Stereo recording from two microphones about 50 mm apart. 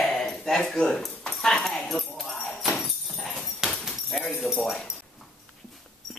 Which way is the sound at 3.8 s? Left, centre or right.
Centre.